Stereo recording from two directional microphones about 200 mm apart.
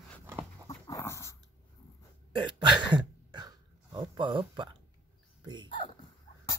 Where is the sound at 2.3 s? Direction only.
25° right (ahead or behind).